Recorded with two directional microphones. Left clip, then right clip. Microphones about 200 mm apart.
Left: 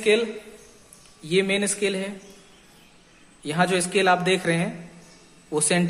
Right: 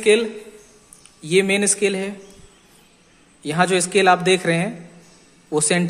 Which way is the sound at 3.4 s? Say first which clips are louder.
Right 4 dB; 20° right (ahead or behind).